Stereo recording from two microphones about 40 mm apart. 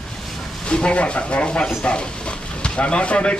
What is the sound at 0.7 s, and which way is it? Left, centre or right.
A man's voice, left.